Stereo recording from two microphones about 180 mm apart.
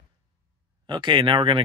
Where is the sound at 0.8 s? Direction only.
25° right (ahead or behind).